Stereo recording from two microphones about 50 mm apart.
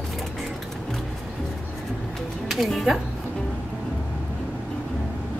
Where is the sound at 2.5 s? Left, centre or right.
Centre.